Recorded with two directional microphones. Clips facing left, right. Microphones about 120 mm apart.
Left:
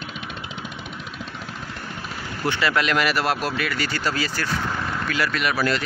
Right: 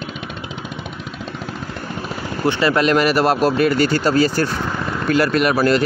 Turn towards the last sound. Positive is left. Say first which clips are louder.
# right 8 dB
turn(degrees=-45)  # may be behind; listen again after turning